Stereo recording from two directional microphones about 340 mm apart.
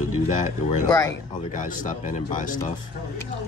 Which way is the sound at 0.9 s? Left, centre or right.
Centre.